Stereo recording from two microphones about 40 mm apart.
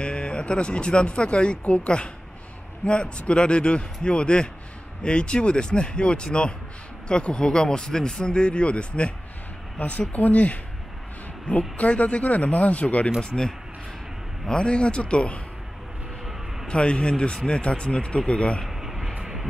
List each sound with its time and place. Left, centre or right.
0.0 s speech: left
9.8 s speech: left
11.7 s speech: left
14.5 s speech: left
16.6 s speech: left
18.7 s a sound: centre